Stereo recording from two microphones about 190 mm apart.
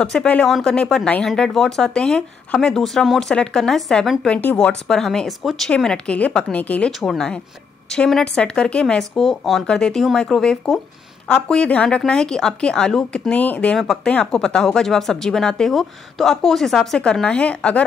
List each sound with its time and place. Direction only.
0.0 s speech: 5° left (ahead or behind)